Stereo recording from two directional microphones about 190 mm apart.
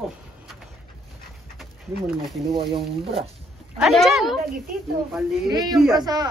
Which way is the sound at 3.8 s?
Centre (ahead or behind).